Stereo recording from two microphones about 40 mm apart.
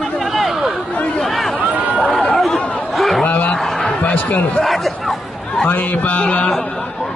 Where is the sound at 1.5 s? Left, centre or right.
Right.